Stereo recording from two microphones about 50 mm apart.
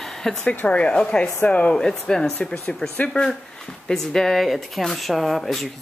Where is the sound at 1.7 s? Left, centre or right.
Centre.